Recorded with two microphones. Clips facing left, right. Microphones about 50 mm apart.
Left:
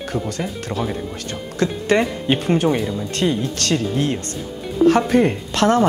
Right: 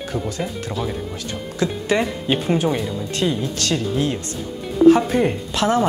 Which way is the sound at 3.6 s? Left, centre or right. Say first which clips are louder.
Left 1 dB; left.